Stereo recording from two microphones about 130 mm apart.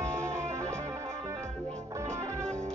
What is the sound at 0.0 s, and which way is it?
Music, 20° right (ahead or behind).